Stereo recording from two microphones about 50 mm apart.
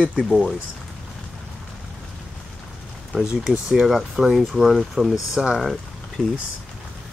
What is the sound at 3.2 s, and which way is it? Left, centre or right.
Speech, centre.